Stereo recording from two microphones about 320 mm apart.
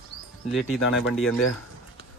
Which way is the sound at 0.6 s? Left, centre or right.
Left.